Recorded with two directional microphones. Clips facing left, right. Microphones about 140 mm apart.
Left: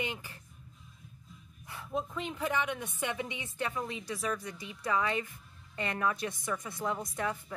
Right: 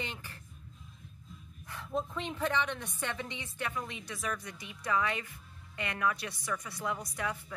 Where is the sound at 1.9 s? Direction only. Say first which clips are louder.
Even; 5° left (ahead or behind).